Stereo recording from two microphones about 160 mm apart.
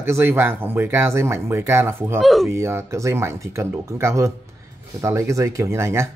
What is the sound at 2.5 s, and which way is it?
Speech, 15° right (ahead or behind).